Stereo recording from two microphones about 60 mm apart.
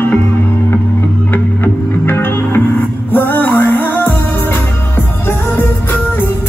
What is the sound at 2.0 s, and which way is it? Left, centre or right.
Music, left.